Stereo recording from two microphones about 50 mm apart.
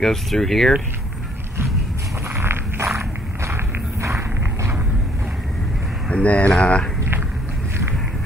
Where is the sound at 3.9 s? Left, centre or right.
Right.